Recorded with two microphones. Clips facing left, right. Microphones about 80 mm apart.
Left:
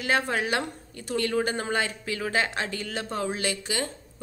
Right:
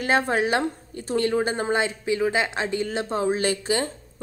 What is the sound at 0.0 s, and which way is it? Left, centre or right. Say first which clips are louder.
A woman's voice: right 4 dB; right.